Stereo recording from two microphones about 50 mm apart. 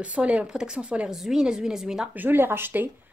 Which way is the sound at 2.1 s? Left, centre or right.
Right.